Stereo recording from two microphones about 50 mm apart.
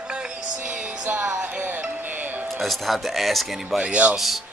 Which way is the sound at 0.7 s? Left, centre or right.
Right.